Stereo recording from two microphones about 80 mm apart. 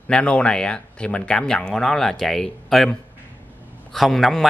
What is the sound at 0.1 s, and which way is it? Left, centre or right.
Speech, centre.